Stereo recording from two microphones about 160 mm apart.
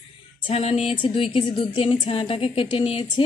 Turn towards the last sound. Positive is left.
turn(degrees=35)  # may be behind; listen again after turning